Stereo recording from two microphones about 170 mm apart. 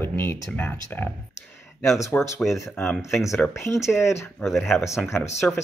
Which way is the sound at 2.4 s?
Centre (ahead or behind).